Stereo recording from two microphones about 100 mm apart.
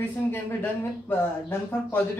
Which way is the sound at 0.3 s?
20° left (ahead or behind).